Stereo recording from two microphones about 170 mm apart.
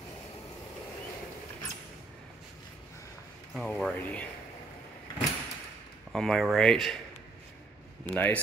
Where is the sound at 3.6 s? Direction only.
Centre (ahead or behind).